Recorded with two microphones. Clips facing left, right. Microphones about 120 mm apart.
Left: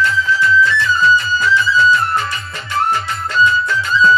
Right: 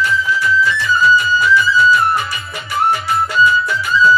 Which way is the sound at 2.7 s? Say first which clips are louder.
Right 2 dB; 10° right (ahead or behind).